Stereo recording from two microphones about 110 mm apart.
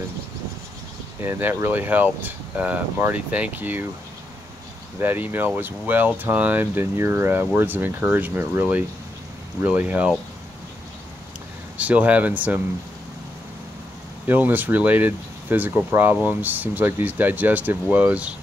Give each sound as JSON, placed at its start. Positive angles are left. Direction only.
{"t": 1.2, "sound": "speech", "side_deg": -20}
{"t": 5.0, "sound": "speech", "side_deg": -20}
{"t": 11.7, "sound": "speech", "side_deg": -15}
{"t": 14.2, "sound": "speech", "side_deg": -15}